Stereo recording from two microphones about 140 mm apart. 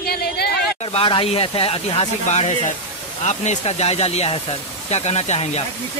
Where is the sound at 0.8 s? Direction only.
40° left (ahead or behind).